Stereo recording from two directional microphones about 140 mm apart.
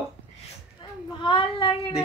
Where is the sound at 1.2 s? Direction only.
40° left (ahead or behind).